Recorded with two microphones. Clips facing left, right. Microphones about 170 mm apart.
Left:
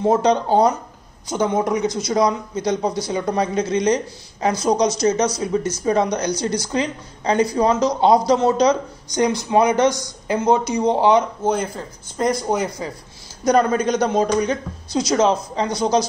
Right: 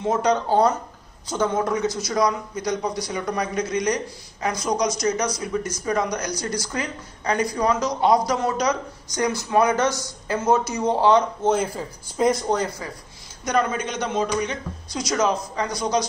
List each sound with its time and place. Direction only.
0.0 s speech: 25° left (ahead or behind)
11.4 s speech: 5° right (ahead or behind)
12.4 s speech: 15° left (ahead or behind)
13.4 s speech: 35° left (ahead or behind)